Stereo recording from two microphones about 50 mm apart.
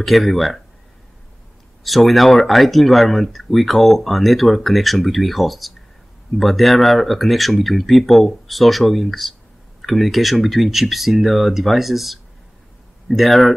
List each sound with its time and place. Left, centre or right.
0.0 s speech: centre
1.8 s speech: centre